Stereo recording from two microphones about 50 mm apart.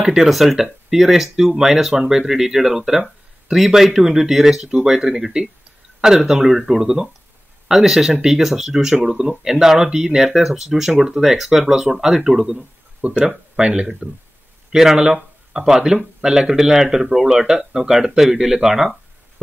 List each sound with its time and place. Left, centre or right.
0.0 s speech: centre
13.0 s speech: right; by 18.9 s centre